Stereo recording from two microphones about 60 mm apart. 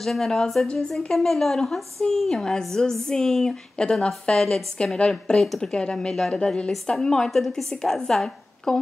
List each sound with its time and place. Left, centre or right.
0.0 s a woman's voice: centre